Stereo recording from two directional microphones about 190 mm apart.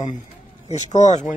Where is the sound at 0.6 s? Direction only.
40° left (ahead or behind).